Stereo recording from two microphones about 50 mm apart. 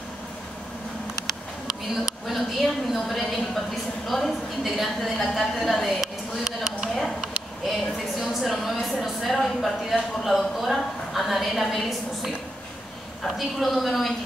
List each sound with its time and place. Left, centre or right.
2.9 s a woman's voice: centre